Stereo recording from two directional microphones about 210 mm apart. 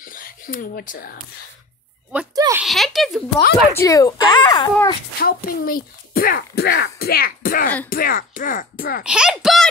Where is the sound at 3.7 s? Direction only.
15° left (ahead or behind).